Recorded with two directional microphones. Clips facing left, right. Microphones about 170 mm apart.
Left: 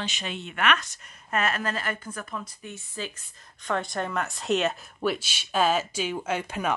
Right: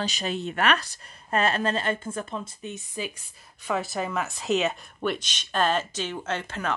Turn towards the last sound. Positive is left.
turn(degrees=10)  # may be behind; listen again after turning